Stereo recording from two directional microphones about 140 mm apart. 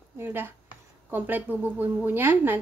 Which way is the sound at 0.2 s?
15° right (ahead or behind).